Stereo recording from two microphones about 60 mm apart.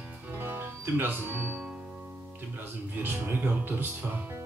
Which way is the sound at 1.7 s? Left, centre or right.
Centre.